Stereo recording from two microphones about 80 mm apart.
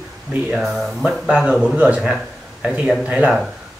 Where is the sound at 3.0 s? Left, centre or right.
Centre.